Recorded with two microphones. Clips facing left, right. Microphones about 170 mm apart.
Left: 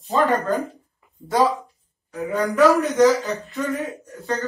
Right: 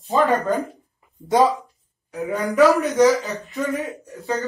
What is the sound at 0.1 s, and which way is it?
Speech, centre (ahead or behind).